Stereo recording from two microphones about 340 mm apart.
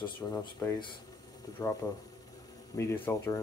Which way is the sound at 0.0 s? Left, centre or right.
Centre.